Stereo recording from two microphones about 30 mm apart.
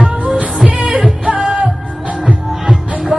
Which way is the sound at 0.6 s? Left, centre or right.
Right.